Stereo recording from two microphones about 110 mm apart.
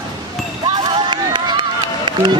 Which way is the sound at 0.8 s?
45° right (ahead or behind).